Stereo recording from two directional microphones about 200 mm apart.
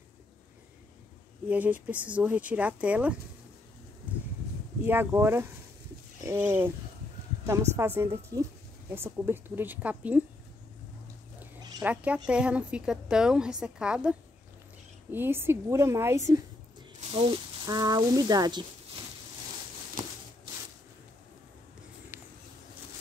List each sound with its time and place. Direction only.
1.5 s speech: 10° right (ahead or behind)
4.8 s speech: 10° right (ahead or behind)
7.7 s speech: 10° right (ahead or behind)
11.8 s a woman's voice: 5° right (ahead or behind)
17.1 s speech: 25° right (ahead or behind)